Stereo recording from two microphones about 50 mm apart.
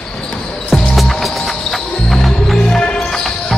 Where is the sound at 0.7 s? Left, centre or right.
Centre.